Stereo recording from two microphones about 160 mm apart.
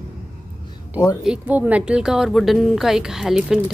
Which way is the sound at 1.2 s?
10° right (ahead or behind).